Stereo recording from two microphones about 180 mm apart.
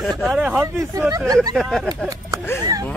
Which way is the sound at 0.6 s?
15° right (ahead or behind).